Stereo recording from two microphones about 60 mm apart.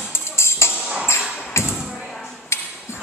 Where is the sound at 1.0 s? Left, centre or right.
Left.